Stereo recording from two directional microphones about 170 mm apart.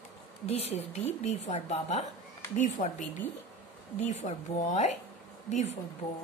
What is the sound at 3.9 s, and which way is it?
A woman's voice, 40° left (ahead or behind).